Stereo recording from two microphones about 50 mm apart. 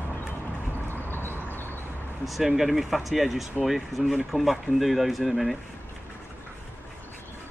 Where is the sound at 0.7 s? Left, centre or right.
Left.